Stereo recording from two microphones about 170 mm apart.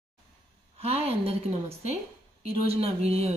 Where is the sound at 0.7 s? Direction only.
40° right (ahead or behind).